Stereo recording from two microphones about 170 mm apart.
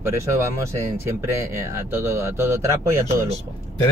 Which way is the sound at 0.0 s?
15° right (ahead or behind).